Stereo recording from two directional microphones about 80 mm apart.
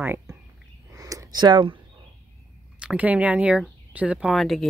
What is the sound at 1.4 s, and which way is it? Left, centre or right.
Speech, right.